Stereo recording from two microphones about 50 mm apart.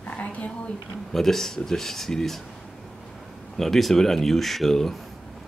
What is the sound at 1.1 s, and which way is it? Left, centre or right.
Speech, centre.